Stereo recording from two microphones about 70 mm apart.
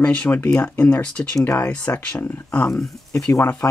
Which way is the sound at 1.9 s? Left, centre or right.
Left.